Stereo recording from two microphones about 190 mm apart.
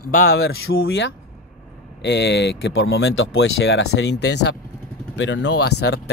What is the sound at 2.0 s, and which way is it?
Speech, 65° left (ahead or behind).